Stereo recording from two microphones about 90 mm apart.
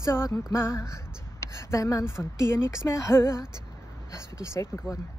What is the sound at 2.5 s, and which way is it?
Music, 30° left (ahead or behind).